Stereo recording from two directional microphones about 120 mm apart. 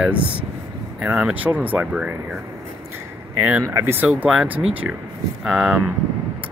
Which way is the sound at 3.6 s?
20° right (ahead or behind).